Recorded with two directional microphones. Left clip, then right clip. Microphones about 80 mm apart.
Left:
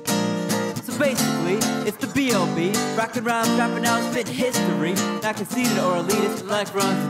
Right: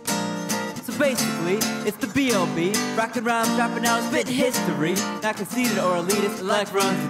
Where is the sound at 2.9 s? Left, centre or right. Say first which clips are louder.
Right 2 dB; centre.